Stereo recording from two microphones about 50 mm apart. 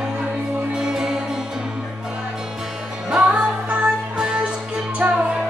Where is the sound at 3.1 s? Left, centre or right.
Right.